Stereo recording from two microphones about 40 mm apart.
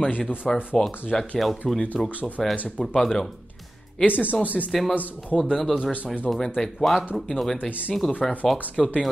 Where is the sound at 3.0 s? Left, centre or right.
Centre.